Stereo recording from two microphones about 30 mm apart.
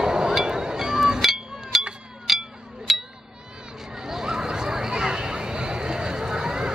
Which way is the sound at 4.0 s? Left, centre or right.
Centre.